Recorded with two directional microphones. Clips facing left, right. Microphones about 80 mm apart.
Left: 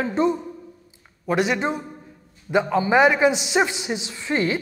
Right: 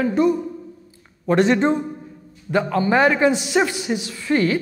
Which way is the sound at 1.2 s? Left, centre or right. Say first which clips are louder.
Right 5 dB; centre.